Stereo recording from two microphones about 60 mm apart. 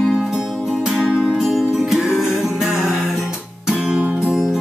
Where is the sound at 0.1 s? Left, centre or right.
Centre.